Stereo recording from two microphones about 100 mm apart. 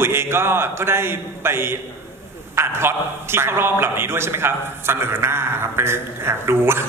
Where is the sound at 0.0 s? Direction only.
25° right (ahead or behind).